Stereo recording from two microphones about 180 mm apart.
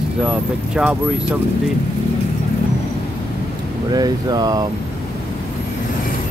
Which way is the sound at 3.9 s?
20° right (ahead or behind).